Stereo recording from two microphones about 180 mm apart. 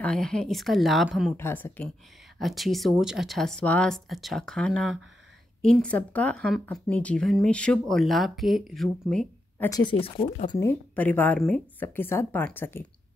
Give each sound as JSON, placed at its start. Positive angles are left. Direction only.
{"t": 0.0, "sound": "speech", "side_deg": 5}
{"t": 1.3, "sound": "speech", "side_deg": 10}
{"t": 2.3, "sound": "speech", "side_deg": 0}
{"t": 9.1, "sound": "a sound", "side_deg": 5}
{"t": 9.7, "sound": "speech", "side_deg": 25}
{"t": 10.5, "sound": "speech", "side_deg": 15}